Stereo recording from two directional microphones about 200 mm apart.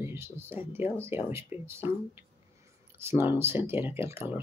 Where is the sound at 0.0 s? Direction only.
10° right (ahead or behind).